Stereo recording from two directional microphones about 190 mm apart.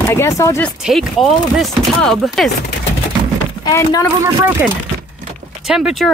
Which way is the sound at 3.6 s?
20° left (ahead or behind).